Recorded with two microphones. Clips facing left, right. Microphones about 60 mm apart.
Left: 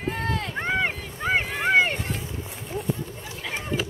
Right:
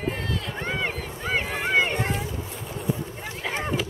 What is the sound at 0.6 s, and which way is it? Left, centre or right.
Run, left.